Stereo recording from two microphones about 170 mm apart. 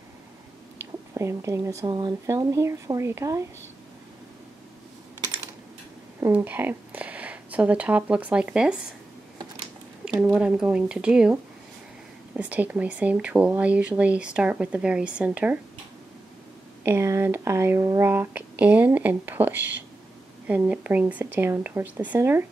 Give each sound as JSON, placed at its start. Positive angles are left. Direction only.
{"t": 1.1, "sound": "speech", "side_deg": -15}
{"t": 6.2, "sound": "speech", "side_deg": -10}
{"t": 10.2, "sound": "speech", "side_deg": -5}
{"t": 12.4, "sound": "speech", "side_deg": -10}
{"t": 16.8, "sound": "speech", "side_deg": -15}